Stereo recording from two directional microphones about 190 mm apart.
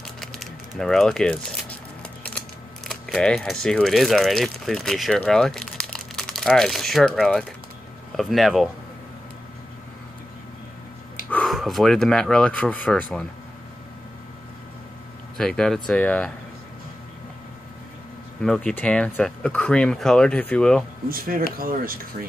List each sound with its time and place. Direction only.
0.2 s a sound: centre (ahead or behind)
2.9 s speech: 5° left (ahead or behind)
11.2 s speech: 5° left (ahead or behind)
15.3 s speech: 5° left (ahead or behind)
18.4 s speech: 5° left (ahead or behind)
21.1 s speech: 50° right (ahead or behind)